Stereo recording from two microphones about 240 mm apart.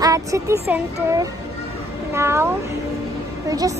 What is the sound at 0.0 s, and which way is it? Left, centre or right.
A woman's voice, centre.